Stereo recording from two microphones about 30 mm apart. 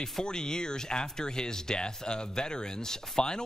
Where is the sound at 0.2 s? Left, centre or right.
Left.